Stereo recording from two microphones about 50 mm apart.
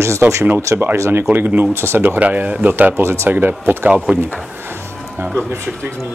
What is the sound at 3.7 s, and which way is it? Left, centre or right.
Speech, right.